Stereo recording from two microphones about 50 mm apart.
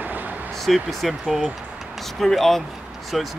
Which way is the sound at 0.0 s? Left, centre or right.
Right.